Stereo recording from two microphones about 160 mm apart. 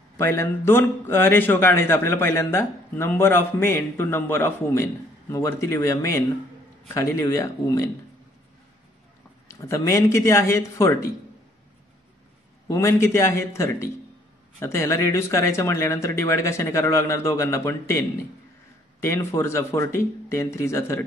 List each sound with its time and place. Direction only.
0.2 s a man's voice: 15° left (ahead or behind)
9.5 s a man's voice: 15° left (ahead or behind)
12.6 s a man's voice: 15° left (ahead or behind)